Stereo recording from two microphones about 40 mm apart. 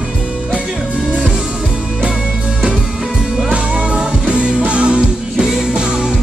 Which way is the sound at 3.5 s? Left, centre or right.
Right.